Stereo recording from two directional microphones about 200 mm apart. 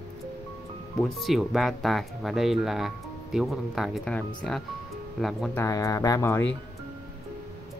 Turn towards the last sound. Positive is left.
turn(degrees=15)  # may be behind; listen again after turning